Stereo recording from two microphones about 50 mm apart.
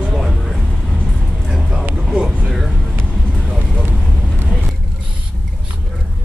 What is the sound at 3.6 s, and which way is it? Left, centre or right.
Vehicle, centre.